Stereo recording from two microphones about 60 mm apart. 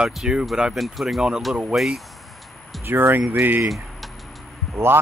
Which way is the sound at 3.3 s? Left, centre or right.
Right.